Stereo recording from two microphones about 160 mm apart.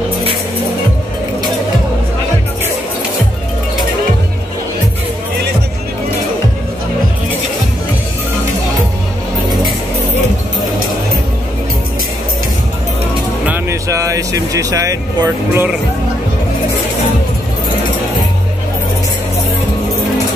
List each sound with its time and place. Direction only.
13.5 s vehicle: 20° right (ahead or behind)